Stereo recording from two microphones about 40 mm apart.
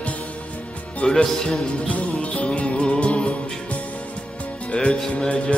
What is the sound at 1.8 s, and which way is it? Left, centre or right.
Music, left.